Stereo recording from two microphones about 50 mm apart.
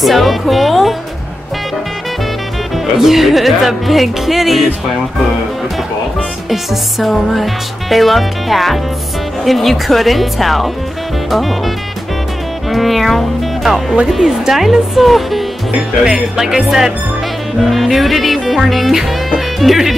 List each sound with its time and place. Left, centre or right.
0.0 s speech: centre
2.7 s music: centre
6.5 s music: centre
12.6 s speech: centre
14.0 s music: centre
16.0 s speech: centre
17.6 s music: centre